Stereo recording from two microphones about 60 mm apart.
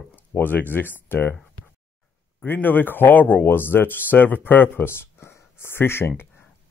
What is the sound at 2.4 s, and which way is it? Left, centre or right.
Speech, left.